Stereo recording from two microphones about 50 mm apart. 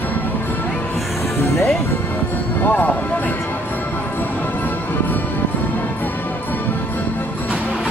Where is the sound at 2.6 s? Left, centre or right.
Left.